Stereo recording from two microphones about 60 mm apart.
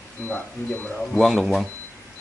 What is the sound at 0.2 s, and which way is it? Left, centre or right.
Speech, left.